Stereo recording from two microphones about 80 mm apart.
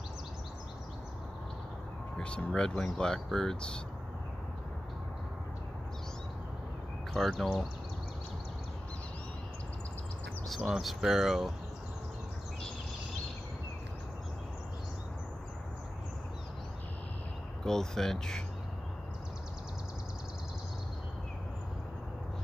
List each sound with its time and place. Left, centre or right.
2.1 s vehicle: centre
2.5 s speech: centre
7.2 s speech: centre
10.7 s speech: centre
17.6 s speech: centre